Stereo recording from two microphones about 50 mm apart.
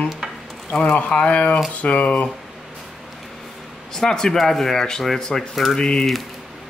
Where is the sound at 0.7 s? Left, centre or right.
Centre.